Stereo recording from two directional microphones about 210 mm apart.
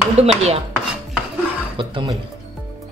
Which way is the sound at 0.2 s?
30° right (ahead or behind).